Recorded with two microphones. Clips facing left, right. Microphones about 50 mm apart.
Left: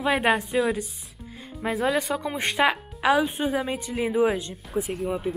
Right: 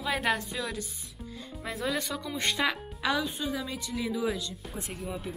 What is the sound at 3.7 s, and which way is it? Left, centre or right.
Speech, left.